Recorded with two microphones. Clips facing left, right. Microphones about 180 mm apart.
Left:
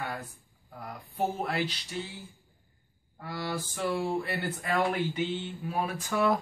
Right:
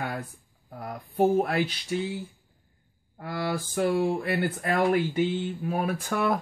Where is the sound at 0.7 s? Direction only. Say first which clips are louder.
Right 5 dB; 50° right (ahead or behind).